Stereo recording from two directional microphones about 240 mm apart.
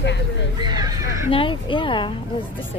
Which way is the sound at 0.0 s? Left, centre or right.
Left.